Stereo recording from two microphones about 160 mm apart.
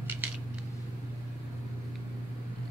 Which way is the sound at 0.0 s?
10° right (ahead or behind).